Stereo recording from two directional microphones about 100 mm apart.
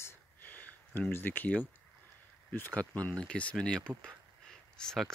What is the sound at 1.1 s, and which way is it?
Speech, 20° left (ahead or behind).